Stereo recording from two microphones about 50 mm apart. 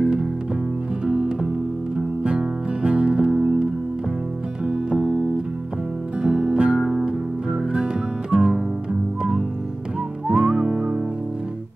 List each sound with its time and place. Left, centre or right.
1.0 s music: centre
4.6 s music: centre
6.2 s music: centre
8.4 s guitar: centre
10.2 s whistling: centre